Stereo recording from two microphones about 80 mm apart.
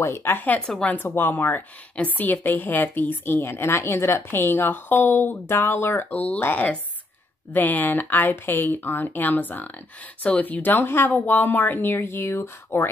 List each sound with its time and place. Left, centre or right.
0.0 s a woman's voice: left; by 0.9 s centre
0.9 s a woman's voice: left